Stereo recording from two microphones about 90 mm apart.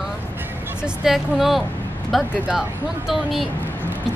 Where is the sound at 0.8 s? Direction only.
5° right (ahead or behind).